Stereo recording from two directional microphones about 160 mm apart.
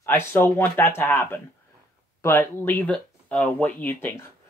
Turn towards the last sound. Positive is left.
turn(degrees=10)  # may be behind; listen again after turning